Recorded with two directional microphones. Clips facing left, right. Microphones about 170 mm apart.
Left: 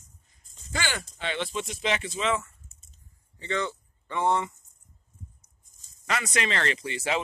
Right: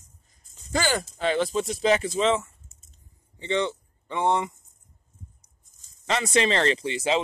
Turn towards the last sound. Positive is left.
turn(degrees=-20)  # may be behind; listen again after turning